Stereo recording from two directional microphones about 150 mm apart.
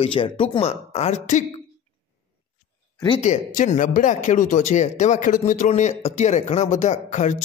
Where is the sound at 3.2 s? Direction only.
55° left (ahead or behind).